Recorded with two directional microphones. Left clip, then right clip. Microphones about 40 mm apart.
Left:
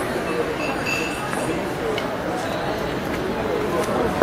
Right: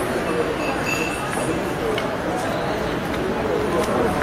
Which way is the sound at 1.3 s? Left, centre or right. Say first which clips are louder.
Right 1 dB; centre.